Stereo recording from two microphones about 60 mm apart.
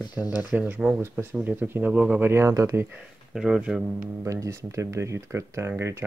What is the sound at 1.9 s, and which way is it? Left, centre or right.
Speech, right.